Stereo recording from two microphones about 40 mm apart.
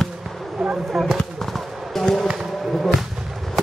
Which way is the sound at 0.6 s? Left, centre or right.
Centre.